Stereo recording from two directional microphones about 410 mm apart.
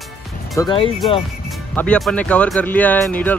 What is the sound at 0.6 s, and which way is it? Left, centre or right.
Speech, centre.